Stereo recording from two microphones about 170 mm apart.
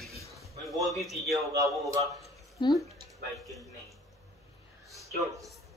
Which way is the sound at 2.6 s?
30° left (ahead or behind).